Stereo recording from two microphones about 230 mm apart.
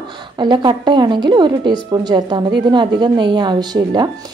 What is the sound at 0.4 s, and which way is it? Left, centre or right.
A woman's voice, centre.